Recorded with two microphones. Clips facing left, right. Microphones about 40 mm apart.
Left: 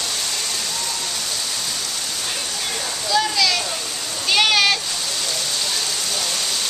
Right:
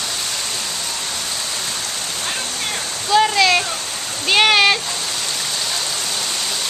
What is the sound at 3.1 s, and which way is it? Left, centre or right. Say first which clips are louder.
Waterfall: right 6 dB; right.